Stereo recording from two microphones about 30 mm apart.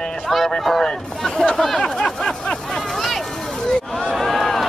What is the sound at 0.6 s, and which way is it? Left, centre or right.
Speech, centre.